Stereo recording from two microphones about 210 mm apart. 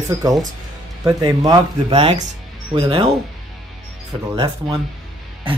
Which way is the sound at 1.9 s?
30° right (ahead or behind).